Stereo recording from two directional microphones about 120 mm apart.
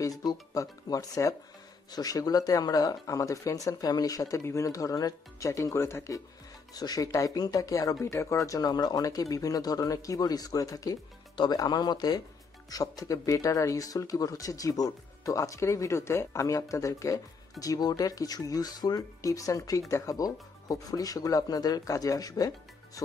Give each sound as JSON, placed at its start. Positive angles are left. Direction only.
{"t": 0.0, "sound": "speech", "side_deg": 30}